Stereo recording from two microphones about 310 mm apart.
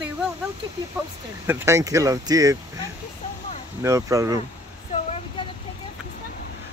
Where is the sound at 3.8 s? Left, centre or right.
Centre.